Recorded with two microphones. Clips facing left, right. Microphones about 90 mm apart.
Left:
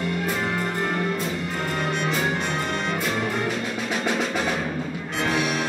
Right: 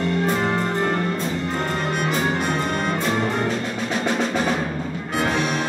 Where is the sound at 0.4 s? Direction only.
30° right (ahead or behind).